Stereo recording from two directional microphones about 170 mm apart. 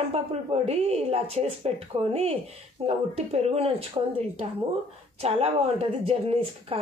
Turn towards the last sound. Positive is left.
turn(degrees=-35)  # may be behind; listen again after turning